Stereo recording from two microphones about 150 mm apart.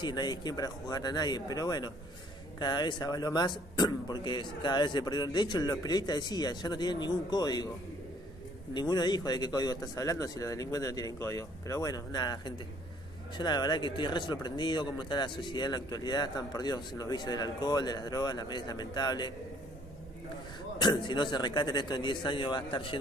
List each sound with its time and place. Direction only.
0.0 s speech: 25° left (ahead or behind)
8.7 s speech: 30° left (ahead or behind)
20.8 s a man's voice: 30° left (ahead or behind)